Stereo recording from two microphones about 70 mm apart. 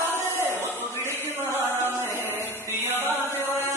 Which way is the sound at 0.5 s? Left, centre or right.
Left.